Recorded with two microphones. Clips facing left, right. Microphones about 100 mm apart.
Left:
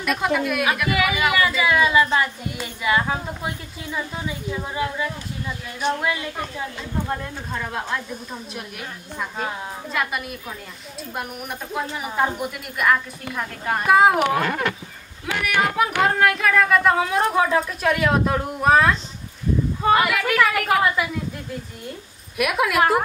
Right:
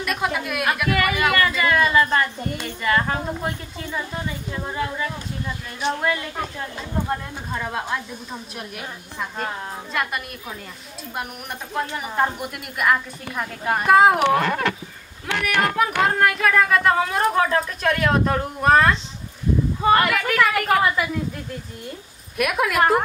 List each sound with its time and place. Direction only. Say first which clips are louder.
0.0 s speech: left 3 dB; centre (ahead or behind)
11.7 s speech: right 1 dB; centre (ahead or behind)
15.4 s speech: even; centre (ahead or behind)
22.4 s speech: even; centre (ahead or behind)